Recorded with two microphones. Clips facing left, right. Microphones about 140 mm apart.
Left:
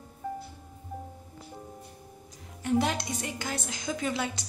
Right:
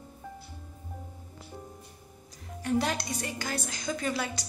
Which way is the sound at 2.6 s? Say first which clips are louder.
Left 2 dB; 20° left (ahead or behind).